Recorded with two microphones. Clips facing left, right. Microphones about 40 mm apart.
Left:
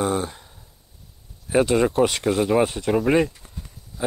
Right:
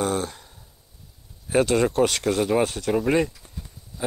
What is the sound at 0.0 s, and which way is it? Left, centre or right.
Speech, centre.